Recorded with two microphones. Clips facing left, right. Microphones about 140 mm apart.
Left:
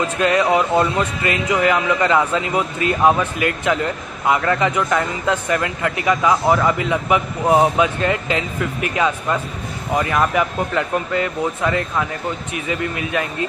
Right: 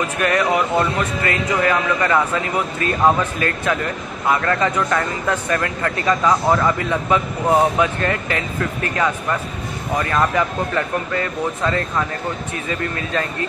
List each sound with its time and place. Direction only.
0.2 s speech: 20° left (ahead or behind)